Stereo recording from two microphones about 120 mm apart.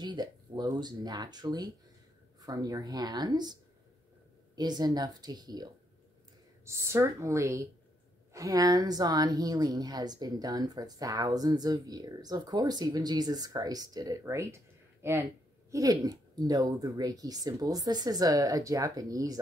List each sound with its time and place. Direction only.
0.0 s a woman's voice: 35° right (ahead or behind)
4.6 s a woman's voice: 35° right (ahead or behind)
6.6 s a woman's voice: 20° right (ahead or behind)